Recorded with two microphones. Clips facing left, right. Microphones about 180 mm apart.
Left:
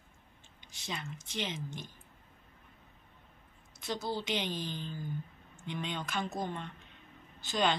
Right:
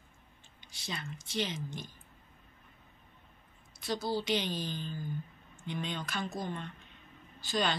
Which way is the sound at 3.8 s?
20° left (ahead or behind).